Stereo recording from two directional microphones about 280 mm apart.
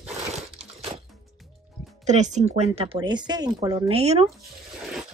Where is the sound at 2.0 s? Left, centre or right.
Right.